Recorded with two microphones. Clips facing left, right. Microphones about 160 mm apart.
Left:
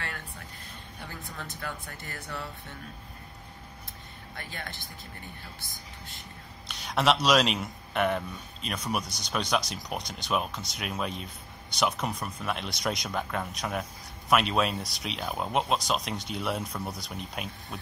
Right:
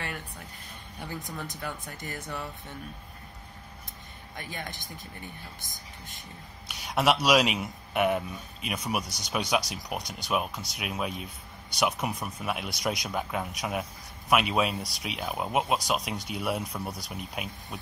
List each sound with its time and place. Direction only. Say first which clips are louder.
1.0 s speech: right 4 dB; 15° right (ahead or behind)
4.4 s speech: right 2 dB; 15° right (ahead or behind)
6.7 s speech: even; 10° right (ahead or behind)